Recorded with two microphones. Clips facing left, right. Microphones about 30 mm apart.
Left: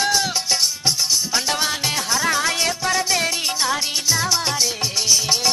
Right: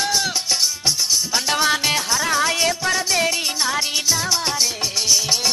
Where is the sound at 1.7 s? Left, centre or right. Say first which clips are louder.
Right 4 dB; centre.